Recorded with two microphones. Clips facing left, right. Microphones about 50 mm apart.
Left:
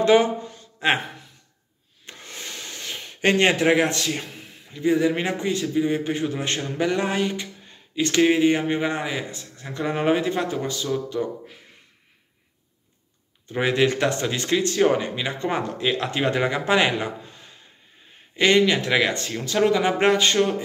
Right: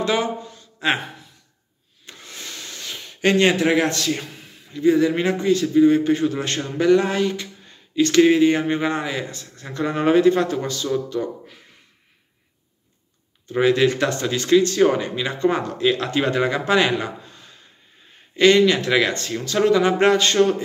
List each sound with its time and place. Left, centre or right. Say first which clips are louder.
0.0 s speech: left 4 dB; left
2.0 s speech: even; left
13.5 s speech: right 4 dB; left